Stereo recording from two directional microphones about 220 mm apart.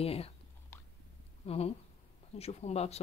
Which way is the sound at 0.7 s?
10° left (ahead or behind).